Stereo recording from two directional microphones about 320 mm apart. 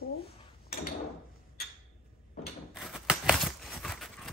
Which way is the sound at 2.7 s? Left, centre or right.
Centre.